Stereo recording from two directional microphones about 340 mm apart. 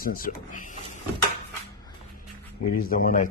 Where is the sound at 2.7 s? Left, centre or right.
Left.